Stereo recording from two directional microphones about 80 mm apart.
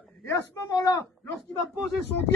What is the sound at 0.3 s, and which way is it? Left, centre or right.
Speech, left.